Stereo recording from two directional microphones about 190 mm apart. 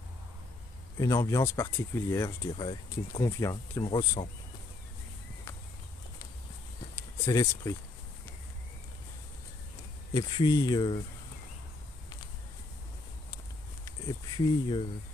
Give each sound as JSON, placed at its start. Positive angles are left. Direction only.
{"t": 0.9, "sound": "speech", "side_deg": 15}
{"t": 7.2, "sound": "speech", "side_deg": 15}
{"t": 10.1, "sound": "speech", "side_deg": 20}
{"t": 13.8, "sound": "speech", "side_deg": 25}